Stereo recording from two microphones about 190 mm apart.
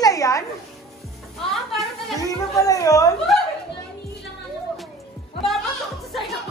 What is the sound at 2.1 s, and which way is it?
Speech, 15° left (ahead or behind).